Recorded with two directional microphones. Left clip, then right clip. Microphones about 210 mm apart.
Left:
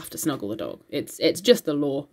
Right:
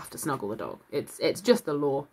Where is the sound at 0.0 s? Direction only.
30° left (ahead or behind).